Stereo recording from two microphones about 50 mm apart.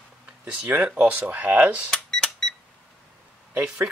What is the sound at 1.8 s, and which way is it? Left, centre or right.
Cash register, centre.